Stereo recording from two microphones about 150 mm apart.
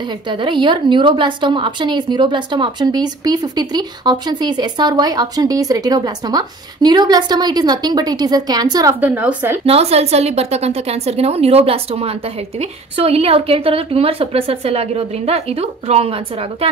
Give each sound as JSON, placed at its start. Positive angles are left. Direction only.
{"t": 0.3, "sound": "a woman's voice", "side_deg": -30}
{"t": 9.0, "sound": "a woman's voice", "side_deg": -10}
{"t": 9.7, "sound": "a woman's voice", "side_deg": -45}